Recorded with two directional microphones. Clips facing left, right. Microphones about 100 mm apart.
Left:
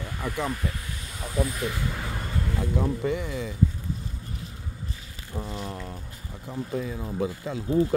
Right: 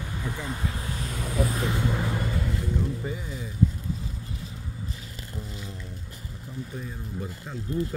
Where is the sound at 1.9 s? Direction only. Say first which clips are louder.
Right 5 dB; 5° right (ahead or behind).